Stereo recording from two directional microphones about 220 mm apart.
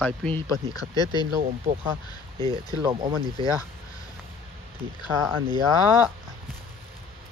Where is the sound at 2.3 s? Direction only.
25° right (ahead or behind).